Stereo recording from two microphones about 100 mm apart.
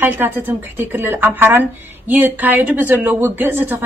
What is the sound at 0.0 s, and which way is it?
A woman's voice, 20° right (ahead or behind).